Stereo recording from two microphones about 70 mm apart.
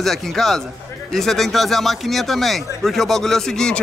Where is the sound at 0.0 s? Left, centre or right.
Centre.